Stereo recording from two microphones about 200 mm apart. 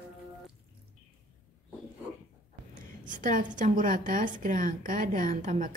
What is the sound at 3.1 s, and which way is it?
A woman's voice, 40° right (ahead or behind).